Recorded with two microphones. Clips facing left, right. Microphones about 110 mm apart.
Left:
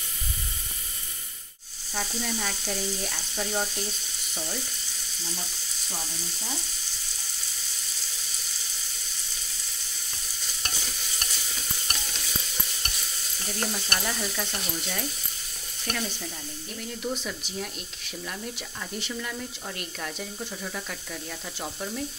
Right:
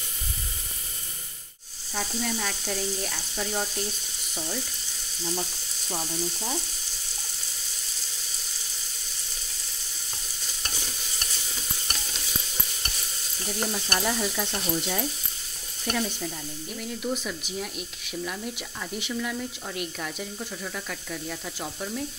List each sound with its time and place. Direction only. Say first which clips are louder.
2.0 s speech: right 1 dB; centre (ahead or behind)
13.5 s stir: right 2 dB; 10° right (ahead or behind)
16.7 s speech: right 2 dB; 5° right (ahead or behind)